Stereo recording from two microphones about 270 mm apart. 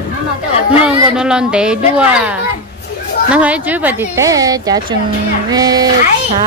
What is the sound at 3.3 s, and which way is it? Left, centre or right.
Speech, centre.